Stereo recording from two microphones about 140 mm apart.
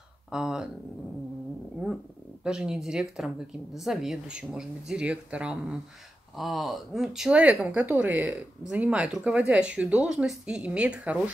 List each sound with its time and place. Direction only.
0.3 s speech: 5° right (ahead or behind)
2.4 s speech: 5° right (ahead or behind)